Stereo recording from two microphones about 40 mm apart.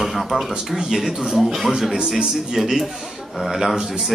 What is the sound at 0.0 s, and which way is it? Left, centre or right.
Speech, centre.